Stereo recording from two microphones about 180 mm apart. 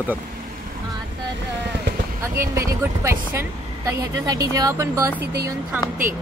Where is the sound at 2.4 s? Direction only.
15° right (ahead or behind).